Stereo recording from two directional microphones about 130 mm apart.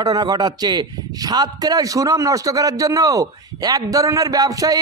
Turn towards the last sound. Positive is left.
turn(degrees=-25)  # may be behind; listen again after turning